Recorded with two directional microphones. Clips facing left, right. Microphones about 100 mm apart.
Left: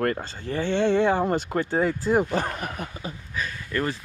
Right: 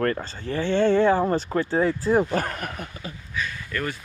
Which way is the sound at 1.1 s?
20° left (ahead or behind).